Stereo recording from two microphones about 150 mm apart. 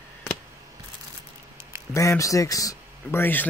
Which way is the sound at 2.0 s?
20° left (ahead or behind).